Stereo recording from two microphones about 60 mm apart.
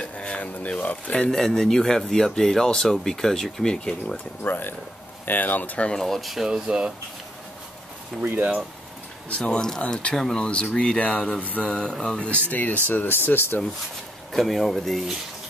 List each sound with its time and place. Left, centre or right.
0.0 s a sound: centre
1.3 s speech: centre
4.4 s speech: left
5.9 s speech: centre
6.4 s speech: centre
8.2 s speech: right
9.3 s speech: centre; by 13.6 s left
14.3 s speech: centre